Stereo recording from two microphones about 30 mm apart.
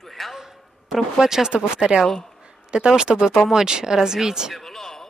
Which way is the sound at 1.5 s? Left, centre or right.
Right.